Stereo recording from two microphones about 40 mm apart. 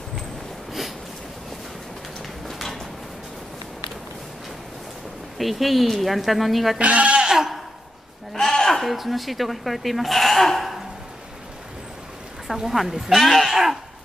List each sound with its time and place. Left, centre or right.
2.4 s a sound: centre
5.4 s speech: centre
6.8 s speech: right; by 7.6 s centre
8.3 s sheep: centre
8.8 s speech: centre
12.5 s speech: centre